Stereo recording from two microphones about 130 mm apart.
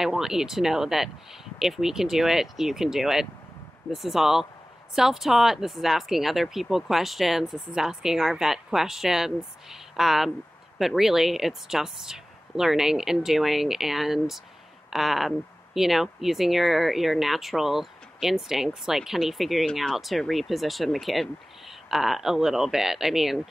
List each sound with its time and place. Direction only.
0.0 s speech: 5° right (ahead or behind)